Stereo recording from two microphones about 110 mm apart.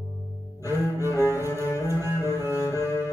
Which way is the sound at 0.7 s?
25° right (ahead or behind).